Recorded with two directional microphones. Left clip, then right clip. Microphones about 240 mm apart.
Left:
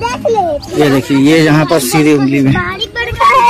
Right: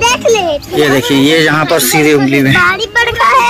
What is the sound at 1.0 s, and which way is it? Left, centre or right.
Speech, centre.